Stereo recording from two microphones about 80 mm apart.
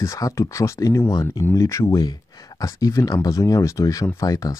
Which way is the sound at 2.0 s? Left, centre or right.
Left.